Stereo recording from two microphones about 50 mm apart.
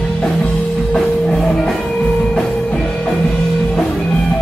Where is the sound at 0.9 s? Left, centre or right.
Centre.